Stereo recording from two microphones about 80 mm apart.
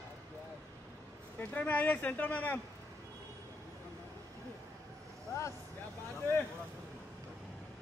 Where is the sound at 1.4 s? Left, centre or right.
Left.